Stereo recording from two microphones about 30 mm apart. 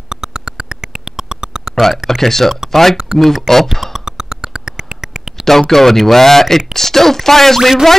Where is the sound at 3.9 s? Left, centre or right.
Right.